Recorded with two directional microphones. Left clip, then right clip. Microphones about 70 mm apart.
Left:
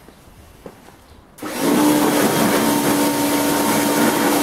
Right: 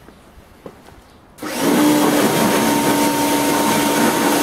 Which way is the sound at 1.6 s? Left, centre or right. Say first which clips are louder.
Right 1 dB; centre.